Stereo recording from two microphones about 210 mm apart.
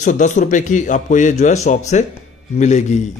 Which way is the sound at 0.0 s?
35° left (ahead or behind).